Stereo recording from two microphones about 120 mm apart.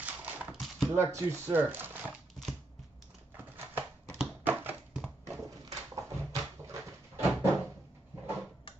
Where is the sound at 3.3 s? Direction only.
15° right (ahead or behind).